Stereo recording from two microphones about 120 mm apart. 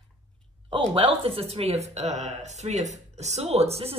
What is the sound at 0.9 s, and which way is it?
Speech, 50° right (ahead or behind).